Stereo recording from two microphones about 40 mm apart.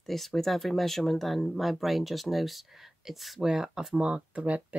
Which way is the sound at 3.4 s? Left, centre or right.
Centre.